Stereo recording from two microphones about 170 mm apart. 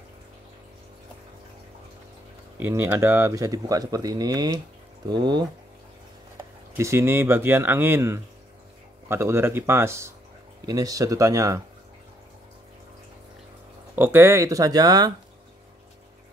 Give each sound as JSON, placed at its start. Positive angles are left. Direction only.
{"t": 2.5, "sound": "speech", "side_deg": -15}
{"t": 6.8, "sound": "speech", "side_deg": -15}
{"t": 13.9, "sound": "speech", "side_deg": -15}